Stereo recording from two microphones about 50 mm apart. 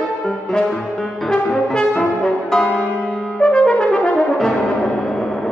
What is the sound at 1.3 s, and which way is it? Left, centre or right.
Brass instrument, centre.